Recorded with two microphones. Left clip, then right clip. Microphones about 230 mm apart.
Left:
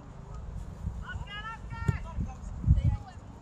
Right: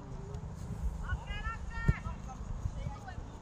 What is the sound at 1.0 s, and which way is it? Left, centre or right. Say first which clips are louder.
Vehicle: left 3 dB; left.